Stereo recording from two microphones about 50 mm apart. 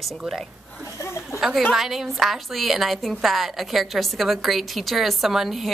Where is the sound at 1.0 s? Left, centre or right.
Left.